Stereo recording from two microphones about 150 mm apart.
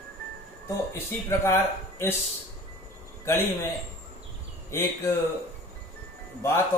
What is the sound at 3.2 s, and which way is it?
Speech, 15° left (ahead or behind).